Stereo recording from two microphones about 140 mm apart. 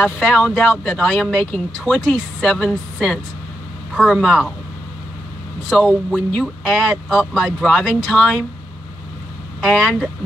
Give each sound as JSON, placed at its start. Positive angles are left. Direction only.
{"t": 0.0, "sound": "speech", "side_deg": 5}
{"t": 5.7, "sound": "speech", "side_deg": 0}
{"t": 9.6, "sound": "speech", "side_deg": 0}